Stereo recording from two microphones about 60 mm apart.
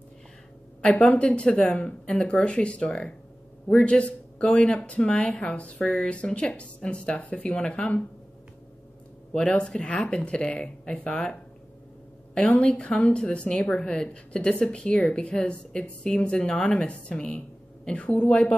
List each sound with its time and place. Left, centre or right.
0.8 s speech: left
9.3 s speech: centre
12.5 s speech: centre